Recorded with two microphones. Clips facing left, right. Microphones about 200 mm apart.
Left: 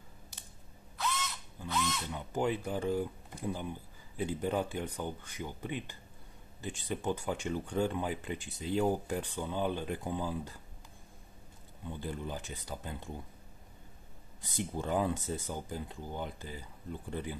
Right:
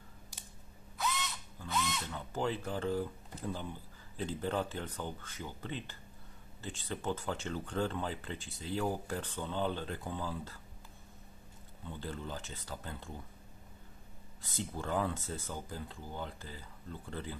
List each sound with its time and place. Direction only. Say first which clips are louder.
0.9 s crow: left 1 dB; centre (ahead or behind)
2.0 s speech: left 3 dB; 15° left (ahead or behind)
11.8 s speech: left 3 dB; 15° left (ahead or behind)
14.4 s speech: left 3 dB; 15° left (ahead or behind)